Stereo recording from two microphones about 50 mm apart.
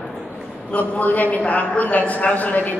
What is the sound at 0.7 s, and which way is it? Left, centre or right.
A man's voice, left.